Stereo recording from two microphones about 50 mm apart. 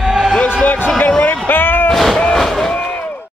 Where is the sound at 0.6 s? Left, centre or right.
Left.